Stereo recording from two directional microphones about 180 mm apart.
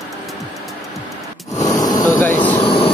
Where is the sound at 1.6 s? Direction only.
20° left (ahead or behind).